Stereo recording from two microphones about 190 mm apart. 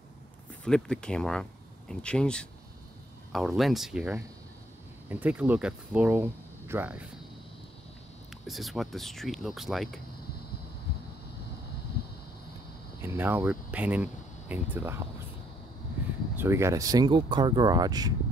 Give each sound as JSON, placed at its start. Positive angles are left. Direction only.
{"t": 0.7, "sound": "speech", "side_deg": 5}
{"t": 8.3, "sound": "speech", "side_deg": 0}
{"t": 13.0, "sound": "speech", "side_deg": -10}
{"t": 16.3, "sound": "speech", "side_deg": -15}